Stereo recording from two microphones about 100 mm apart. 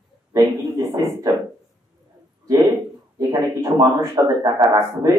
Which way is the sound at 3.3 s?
35° right (ahead or behind).